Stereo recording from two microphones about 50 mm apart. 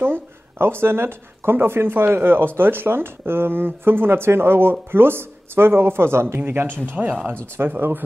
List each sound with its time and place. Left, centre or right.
0.0 s speech: right
6.3 s speech: right